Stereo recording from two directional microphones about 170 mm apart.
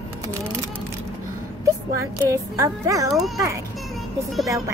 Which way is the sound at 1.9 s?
20° right (ahead or behind).